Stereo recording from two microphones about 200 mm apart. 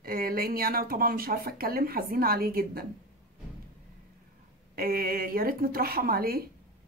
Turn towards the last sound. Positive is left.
turn(degrees=-50)  # may be behind; listen again after turning